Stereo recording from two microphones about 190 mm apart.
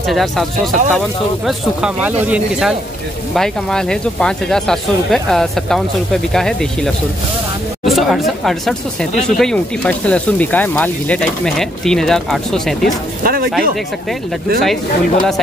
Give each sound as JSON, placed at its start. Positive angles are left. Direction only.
{"t": 0.1, "sound": "speech", "side_deg": 0}
{"t": 3.3, "sound": "speech", "side_deg": 5}
{"t": 13.2, "sound": "speech", "side_deg": -50}